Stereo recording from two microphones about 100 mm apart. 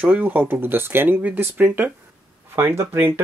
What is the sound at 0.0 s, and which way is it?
Speech, 15° right (ahead or behind).